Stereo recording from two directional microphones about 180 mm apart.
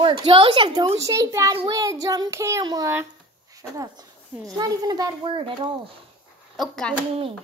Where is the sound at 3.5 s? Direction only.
20° right (ahead or behind).